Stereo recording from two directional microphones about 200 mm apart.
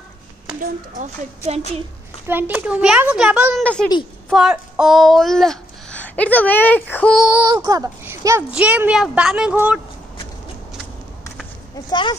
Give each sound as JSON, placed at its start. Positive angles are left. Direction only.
{"t": 0.6, "sound": "speech", "side_deg": -35}
{"t": 2.2, "sound": "a child's voice", "side_deg": -10}
{"t": 3.5, "sound": "a woman's voice", "side_deg": 5}
{"t": 7.4, "sound": "a child's voice", "side_deg": -20}
{"t": 11.7, "sound": "speech", "side_deg": 20}